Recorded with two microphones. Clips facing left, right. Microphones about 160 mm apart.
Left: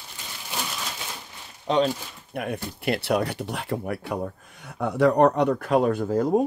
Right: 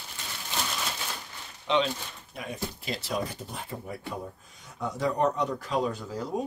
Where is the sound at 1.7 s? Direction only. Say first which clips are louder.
Left 4 dB; 40° left (ahead or behind).